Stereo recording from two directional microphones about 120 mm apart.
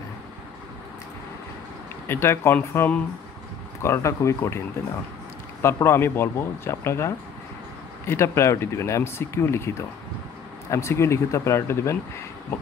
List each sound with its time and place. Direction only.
2.0 s speech: 20° left (ahead or behind)
5.6 s speech: 25° left (ahead or behind)